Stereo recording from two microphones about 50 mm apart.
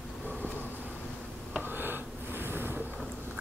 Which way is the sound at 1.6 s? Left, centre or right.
Right.